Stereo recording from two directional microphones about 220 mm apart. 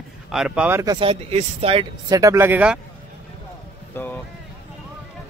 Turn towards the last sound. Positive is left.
turn(degrees=10)  # may be behind; listen again after turning